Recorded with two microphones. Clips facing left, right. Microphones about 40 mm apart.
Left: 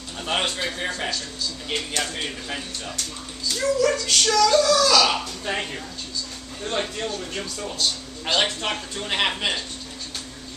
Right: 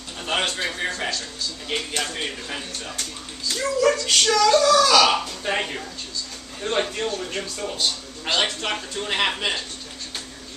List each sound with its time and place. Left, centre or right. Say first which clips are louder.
0.2 s a man's voice: right 1 dB; centre
3.9 s speech: right 1 dB; centre
8.3 s a man's voice: even; centre